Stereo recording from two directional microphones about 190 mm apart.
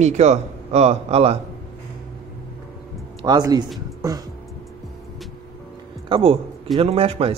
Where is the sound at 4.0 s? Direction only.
20° right (ahead or behind).